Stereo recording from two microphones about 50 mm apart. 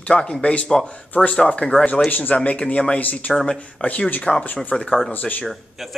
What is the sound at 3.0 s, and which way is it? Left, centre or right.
Speech, left.